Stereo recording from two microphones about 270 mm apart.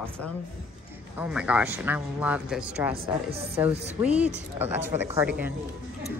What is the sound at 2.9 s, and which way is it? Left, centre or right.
Speech, right.